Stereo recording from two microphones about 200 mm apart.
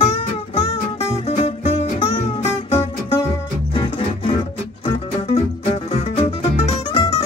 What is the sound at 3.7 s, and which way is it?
Music, 25° left (ahead or behind).